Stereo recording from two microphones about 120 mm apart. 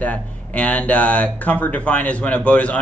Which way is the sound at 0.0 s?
10° left (ahead or behind).